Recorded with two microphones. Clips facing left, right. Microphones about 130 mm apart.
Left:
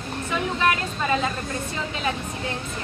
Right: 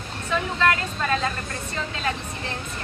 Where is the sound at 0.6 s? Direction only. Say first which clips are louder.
Right 1 dB; 15° left (ahead or behind).